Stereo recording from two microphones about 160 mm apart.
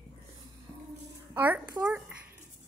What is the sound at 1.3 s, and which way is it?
Speech, 10° right (ahead or behind).